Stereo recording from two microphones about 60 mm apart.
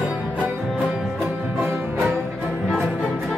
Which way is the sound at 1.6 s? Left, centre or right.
Right.